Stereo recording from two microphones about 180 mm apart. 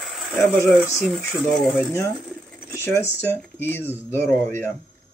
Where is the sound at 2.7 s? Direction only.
15° left (ahead or behind).